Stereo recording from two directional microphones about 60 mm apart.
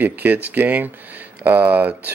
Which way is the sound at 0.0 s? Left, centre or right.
Right.